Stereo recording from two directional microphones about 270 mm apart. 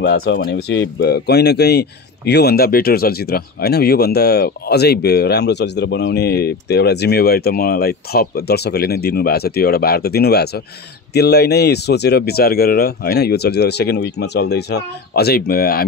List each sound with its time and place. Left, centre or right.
0.0 s speech: left